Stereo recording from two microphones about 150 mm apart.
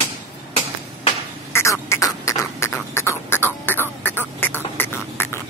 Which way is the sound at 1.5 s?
20° left (ahead or behind).